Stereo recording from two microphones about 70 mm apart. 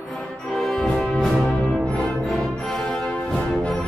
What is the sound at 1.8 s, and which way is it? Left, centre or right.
Music, centre.